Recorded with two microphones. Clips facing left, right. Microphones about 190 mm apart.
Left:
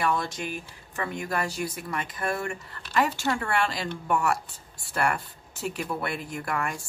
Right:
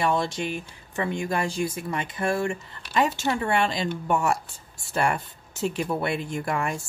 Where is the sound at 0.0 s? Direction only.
25° right (ahead or behind).